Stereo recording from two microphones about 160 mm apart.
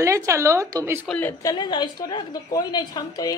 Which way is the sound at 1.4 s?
30° left (ahead or behind).